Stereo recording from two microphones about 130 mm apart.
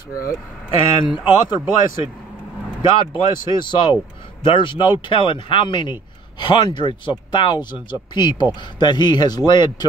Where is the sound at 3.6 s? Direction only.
35° left (ahead or behind).